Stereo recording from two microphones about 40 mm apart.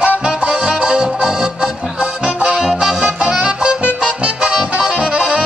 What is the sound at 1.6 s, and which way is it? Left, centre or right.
Music, right.